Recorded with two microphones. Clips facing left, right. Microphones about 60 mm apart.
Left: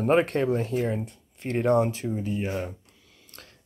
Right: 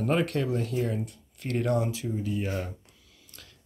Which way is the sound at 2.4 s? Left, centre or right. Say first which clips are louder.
Left 2 dB; left.